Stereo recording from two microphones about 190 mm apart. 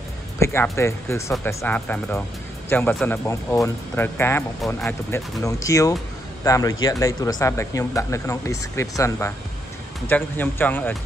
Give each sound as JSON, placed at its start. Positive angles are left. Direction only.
{"t": 0.4, "sound": "speech", "side_deg": 15}